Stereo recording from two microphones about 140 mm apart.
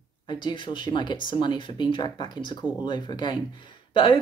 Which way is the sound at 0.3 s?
35° left (ahead or behind).